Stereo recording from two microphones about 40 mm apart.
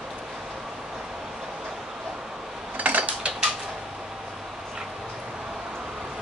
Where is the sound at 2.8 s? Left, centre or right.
Right.